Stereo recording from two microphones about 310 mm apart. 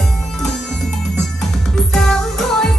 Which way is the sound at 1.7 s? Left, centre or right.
Centre.